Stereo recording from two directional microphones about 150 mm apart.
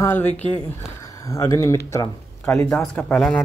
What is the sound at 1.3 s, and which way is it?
Speech, 20° left (ahead or behind).